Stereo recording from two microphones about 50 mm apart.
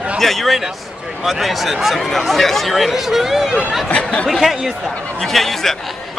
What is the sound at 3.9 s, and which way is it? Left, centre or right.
Speech, left.